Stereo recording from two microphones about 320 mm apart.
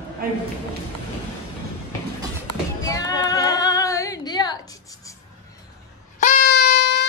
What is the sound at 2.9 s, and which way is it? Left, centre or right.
Female singing, centre.